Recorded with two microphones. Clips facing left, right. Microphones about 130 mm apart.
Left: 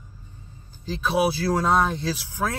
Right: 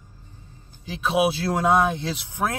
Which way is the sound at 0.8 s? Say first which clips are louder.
Right 1 dB; 20° right (ahead or behind).